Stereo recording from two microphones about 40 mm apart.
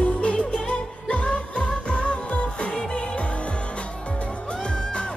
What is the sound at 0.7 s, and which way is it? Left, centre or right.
Music of asia, left.